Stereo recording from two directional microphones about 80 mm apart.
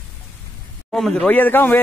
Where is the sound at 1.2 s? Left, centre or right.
Left.